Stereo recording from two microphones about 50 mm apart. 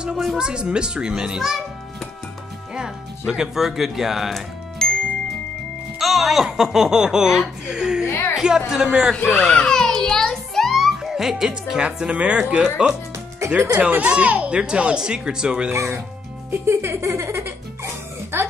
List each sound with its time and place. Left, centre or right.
0.4 s a child's voice: centre
4.8 s music: centre
5.9 s speech: centre
9.3 s a child's voice: centre
9.7 s music: centre
11.0 s speech: centre
13.4 s music: right
13.7 s a child's voice: right
14.6 s speech: centre
15.7 s speech: right
16.4 s music: right